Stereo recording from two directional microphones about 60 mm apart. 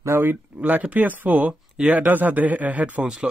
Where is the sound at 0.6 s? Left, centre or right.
Right.